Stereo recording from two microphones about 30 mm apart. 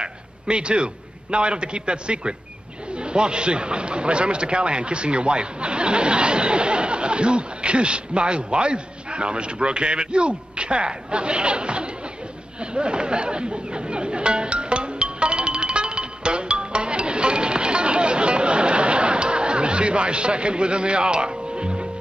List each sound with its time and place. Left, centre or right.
0.0 s a sound: right
1.3 s a man's voice: right
12.5 s chatter: right